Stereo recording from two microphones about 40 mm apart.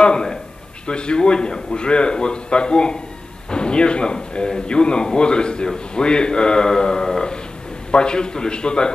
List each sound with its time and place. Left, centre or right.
0.0 s speech: centre